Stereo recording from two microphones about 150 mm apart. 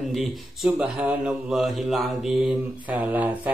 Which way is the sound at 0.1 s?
Centre (ahead or behind).